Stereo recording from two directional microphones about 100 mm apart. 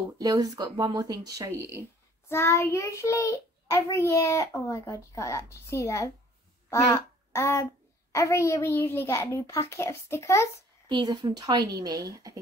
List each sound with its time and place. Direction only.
0.2 s speech: 40° right (ahead or behind)
2.2 s a child's voice: 25° left (ahead or behind)
10.9 s speech: 40° right (ahead or behind)